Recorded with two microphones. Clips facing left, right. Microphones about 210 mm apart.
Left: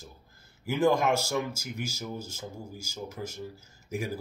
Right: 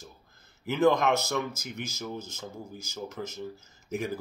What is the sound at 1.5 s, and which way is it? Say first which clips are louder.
Speech: left 2 dB; 30° left (ahead or behind).